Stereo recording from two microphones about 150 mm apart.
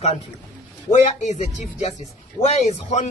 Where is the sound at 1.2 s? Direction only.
50° left (ahead or behind).